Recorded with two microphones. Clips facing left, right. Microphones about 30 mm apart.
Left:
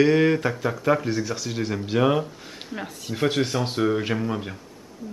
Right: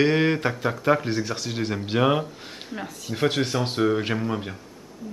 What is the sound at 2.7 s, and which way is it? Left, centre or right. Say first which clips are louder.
Speech: left 1 dB; centre.